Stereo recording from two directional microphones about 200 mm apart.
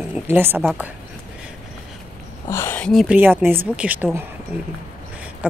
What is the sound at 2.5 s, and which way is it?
Speech, 10° left (ahead or behind).